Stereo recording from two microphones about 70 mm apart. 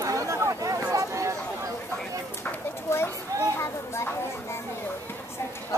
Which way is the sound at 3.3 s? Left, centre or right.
Right.